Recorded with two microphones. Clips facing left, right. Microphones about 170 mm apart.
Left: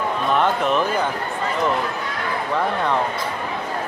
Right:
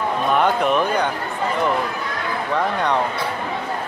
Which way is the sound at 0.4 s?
5° right (ahead or behind).